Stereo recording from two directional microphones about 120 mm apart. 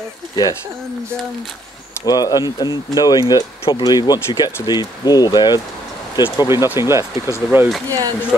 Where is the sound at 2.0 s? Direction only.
35° left (ahead or behind).